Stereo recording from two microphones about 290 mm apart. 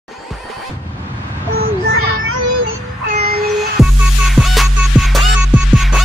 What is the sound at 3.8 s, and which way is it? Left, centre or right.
Music, centre.